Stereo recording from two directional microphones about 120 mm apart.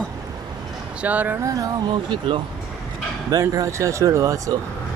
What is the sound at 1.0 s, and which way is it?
Speech, 15° right (ahead or behind).